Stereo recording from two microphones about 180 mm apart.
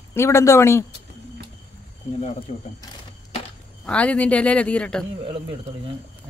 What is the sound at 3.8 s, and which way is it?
A man's voice, 5° left (ahead or behind).